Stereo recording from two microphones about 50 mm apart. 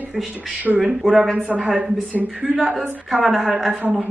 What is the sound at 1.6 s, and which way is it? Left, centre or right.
Speech, centre.